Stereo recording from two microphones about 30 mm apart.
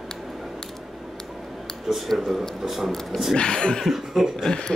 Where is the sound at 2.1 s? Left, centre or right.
Centre.